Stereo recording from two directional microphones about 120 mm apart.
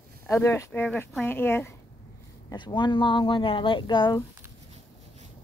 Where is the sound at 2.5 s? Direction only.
40° left (ahead or behind).